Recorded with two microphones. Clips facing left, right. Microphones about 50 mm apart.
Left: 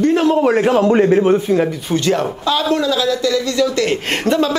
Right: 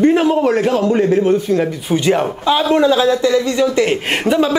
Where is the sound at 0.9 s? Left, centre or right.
Left.